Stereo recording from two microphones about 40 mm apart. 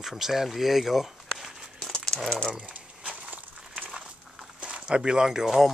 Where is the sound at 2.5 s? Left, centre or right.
Right.